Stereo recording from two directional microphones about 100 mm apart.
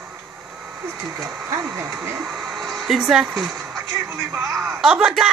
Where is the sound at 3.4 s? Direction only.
35° right (ahead or behind).